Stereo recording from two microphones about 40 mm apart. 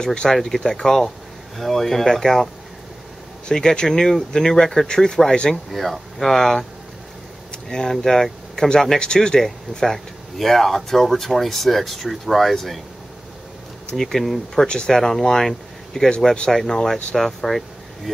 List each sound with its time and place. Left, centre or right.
0.0 s speech: centre
5.7 s speech: centre
7.7 s speech: centre
9.0 s speech: left
9.4 s speech: centre
13.9 s speech: centre
14.7 s speech: left
15.0 s speech: centre